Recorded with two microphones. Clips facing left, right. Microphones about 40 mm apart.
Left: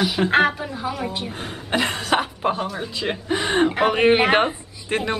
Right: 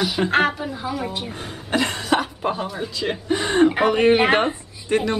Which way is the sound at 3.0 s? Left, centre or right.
Centre.